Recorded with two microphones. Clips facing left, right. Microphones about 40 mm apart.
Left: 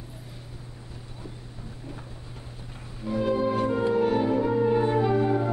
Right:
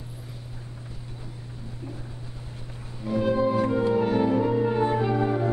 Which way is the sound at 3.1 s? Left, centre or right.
Centre.